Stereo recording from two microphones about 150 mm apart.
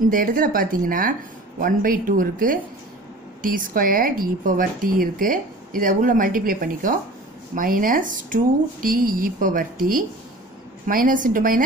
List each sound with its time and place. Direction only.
0.1 s speech: 70° right (ahead or behind)